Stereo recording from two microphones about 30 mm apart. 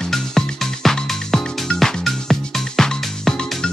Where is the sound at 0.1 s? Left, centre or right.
Centre.